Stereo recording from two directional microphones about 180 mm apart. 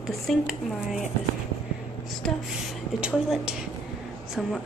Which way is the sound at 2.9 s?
5° right (ahead or behind).